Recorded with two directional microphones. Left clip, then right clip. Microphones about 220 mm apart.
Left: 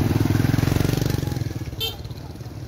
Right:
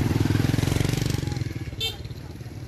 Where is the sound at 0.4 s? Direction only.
35° left (ahead or behind).